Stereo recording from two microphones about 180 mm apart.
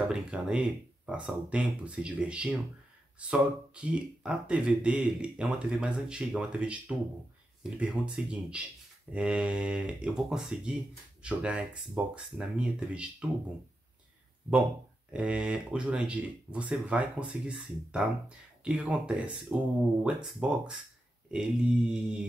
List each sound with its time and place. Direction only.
0.1 s speech: 5° right (ahead or behind)
15.1 s speech: 5° right (ahead or behind)